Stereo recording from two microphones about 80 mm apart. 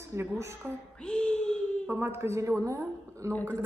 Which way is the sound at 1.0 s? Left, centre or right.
Centre.